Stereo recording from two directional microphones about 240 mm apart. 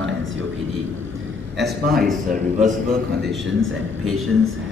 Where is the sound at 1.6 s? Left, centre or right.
Right.